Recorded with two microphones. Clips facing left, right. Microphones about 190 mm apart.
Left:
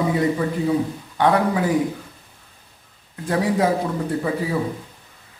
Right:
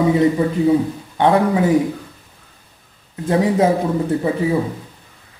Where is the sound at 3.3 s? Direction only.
25° right (ahead or behind).